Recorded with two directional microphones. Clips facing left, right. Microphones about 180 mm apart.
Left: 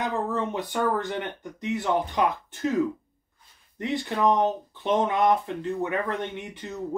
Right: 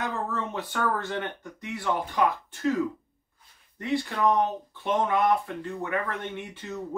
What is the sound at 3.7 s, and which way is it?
Speech, 20° left (ahead or behind).